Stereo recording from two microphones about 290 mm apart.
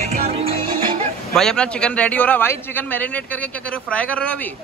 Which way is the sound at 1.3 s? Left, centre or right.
Centre.